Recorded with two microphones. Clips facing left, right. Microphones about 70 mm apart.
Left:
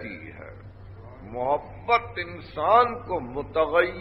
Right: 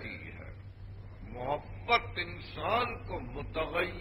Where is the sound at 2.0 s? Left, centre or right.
Left.